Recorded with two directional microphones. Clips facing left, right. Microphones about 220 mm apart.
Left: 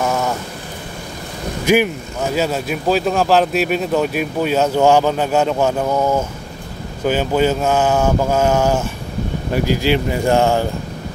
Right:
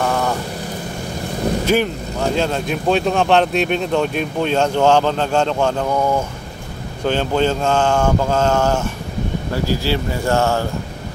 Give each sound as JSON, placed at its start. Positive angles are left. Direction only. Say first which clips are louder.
{"t": 0.0, "sound": "vehicle", "louder": "even", "side_deg": 5}
{"t": 2.3, "sound": "speech", "louder": "left 3 dB", "side_deg": 5}